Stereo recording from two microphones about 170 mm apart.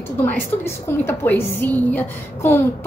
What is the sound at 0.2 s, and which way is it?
A woman's voice, 15° left (ahead or behind).